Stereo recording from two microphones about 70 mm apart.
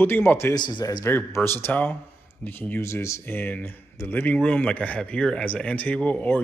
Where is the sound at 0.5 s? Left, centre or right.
Left.